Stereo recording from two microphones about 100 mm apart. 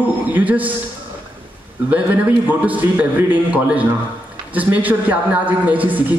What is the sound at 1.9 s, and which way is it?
A man's voice, 15° right (ahead or behind).